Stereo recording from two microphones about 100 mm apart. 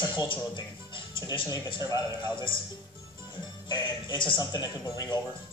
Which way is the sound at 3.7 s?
50° left (ahead or behind).